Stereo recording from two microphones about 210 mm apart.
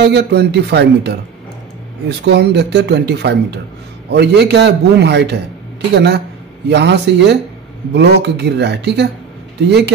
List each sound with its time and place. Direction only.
0.0 s speech: 55° right (ahead or behind)